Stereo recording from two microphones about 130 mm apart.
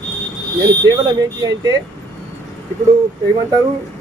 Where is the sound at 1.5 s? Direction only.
30° right (ahead or behind).